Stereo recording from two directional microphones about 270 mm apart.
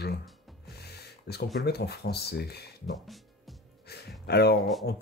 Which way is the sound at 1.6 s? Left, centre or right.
Left.